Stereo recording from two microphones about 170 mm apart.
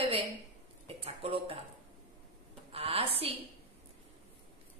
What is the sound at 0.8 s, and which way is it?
Speech, 35° right (ahead or behind).